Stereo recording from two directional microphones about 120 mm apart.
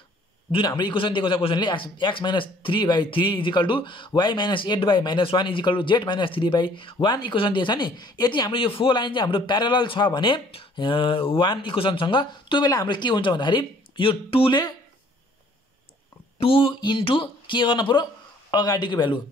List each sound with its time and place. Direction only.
0.5 s a man's voice: 40° left (ahead or behind)
16.3 s a man's voice: 50° left (ahead or behind)